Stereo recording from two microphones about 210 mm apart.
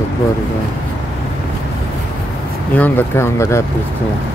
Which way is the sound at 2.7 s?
10° left (ahead or behind).